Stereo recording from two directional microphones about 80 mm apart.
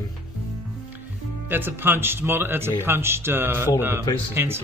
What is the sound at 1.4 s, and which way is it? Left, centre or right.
A man's voice, right.